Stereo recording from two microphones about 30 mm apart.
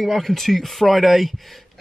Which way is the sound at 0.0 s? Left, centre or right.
Centre.